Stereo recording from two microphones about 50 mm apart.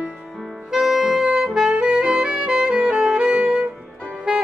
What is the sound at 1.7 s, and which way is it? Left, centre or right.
Music, centre.